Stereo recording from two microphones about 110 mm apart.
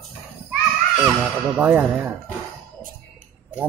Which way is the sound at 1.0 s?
5° right (ahead or behind).